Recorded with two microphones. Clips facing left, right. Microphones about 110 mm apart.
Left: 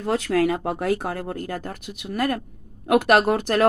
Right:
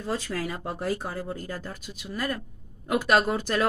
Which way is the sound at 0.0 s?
65° left (ahead or behind).